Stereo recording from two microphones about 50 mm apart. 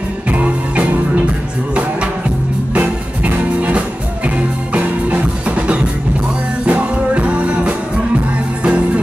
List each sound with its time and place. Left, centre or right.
0.3 s music: right
2.7 s music: right
6.6 s music: right